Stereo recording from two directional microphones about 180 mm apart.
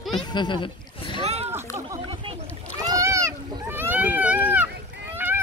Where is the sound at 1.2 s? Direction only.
35° right (ahead or behind).